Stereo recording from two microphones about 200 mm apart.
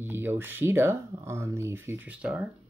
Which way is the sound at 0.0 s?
10° right (ahead or behind).